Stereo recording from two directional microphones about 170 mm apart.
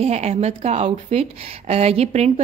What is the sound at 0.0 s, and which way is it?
A woman's voice, 40° right (ahead or behind).